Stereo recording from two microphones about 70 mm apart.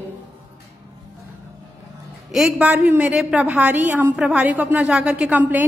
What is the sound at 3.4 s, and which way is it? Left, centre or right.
Speech, right.